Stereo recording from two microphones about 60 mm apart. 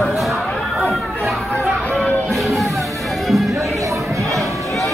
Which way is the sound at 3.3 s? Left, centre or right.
Centre.